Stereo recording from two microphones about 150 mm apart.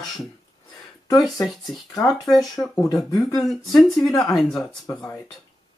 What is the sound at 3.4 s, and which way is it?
Speech, centre (ahead or behind).